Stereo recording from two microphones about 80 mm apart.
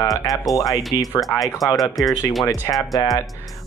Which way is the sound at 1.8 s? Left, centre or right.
Centre.